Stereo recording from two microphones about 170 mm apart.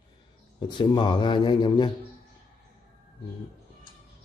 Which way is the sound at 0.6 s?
25° left (ahead or behind).